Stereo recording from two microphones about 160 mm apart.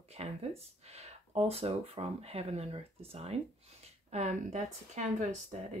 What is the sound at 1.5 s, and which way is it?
Speech, 40° right (ahead or behind).